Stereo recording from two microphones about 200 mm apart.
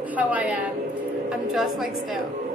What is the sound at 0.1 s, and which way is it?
A woman's voice, 5° right (ahead or behind).